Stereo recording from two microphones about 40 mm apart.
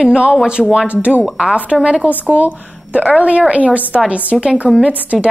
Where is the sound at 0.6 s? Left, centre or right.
Centre.